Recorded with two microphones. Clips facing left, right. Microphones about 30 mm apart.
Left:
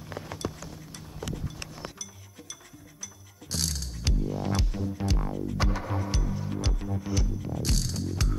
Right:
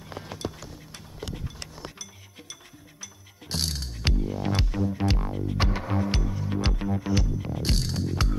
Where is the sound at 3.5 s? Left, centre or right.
Right.